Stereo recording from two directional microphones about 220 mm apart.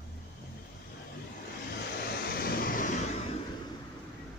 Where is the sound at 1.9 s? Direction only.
45° left (ahead or behind).